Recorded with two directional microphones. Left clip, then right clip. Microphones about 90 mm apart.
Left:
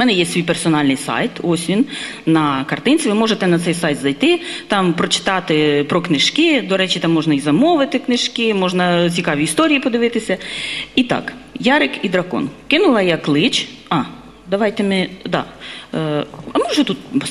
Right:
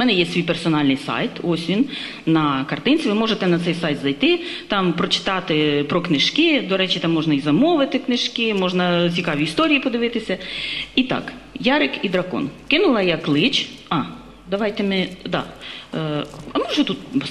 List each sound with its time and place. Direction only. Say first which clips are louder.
0.0 s speech: left 3 dB; 40° left (ahead or behind)